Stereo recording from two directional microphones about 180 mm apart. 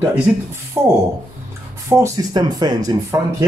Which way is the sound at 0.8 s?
15° right (ahead or behind).